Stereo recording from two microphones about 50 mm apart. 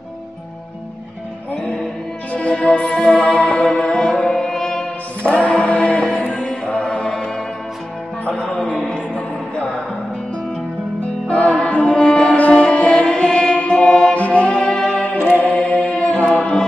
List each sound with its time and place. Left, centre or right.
2.3 s music: centre
5.4 s music: left; by 9.0 s centre
11.2 s music: left
15.1 s a capella: left
16.3 s music: centre